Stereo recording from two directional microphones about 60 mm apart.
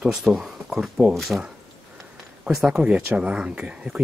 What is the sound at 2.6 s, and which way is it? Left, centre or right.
Speech, centre.